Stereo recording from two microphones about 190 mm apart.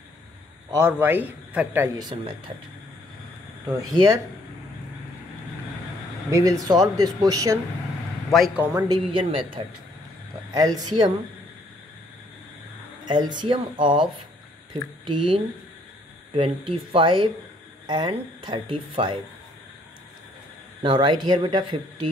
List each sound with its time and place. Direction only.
0.7 s a man's voice: 15° right (ahead or behind)
2.0 s speech: 25° right (ahead or behind)
3.6 s speech: 20° right (ahead or behind)
6.6 s speech: 20° right (ahead or behind)
8.3 s a man's voice: centre (ahead or behind)
8.7 s speech: 20° right (ahead or behind)
13.0 s speech: 25° right (ahead or behind)
20.8 s speech: 25° right (ahead or behind)